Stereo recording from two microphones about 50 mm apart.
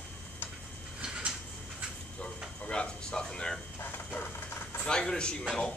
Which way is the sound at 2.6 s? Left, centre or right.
Left.